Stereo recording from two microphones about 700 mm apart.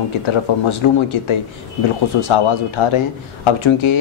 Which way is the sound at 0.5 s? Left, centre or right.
Left.